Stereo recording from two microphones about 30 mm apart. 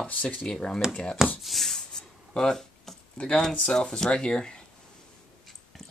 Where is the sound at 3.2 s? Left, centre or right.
Left.